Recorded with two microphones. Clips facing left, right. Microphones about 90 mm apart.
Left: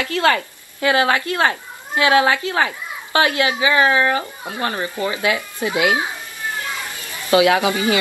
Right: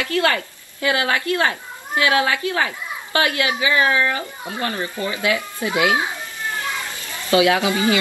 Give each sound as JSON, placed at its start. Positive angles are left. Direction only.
{"t": 0.0, "sound": "a child's voice", "side_deg": 35}
{"t": 7.2, "sound": "speech", "side_deg": 25}